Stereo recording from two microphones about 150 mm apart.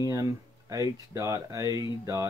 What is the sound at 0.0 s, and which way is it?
Speech, 20° right (ahead or behind).